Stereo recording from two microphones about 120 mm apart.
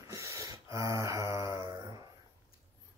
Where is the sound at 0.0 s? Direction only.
25° right (ahead or behind).